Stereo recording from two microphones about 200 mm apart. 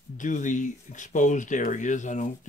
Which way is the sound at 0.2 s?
40° left (ahead or behind).